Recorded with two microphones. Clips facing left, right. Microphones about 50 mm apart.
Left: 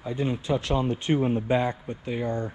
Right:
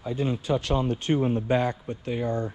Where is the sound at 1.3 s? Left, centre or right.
Left.